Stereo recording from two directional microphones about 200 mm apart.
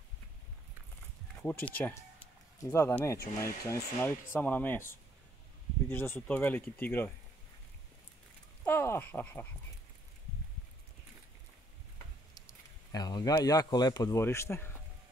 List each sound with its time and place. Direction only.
1.4 s speech: 10° left (ahead or behind)
5.9 s speech: 10° left (ahead or behind)
8.6 s speech: 10° left (ahead or behind)
12.4 s speech: 20° left (ahead or behind)